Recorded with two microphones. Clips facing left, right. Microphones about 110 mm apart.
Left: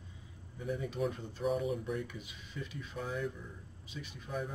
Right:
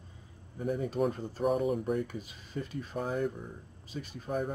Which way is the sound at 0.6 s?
45° right (ahead or behind).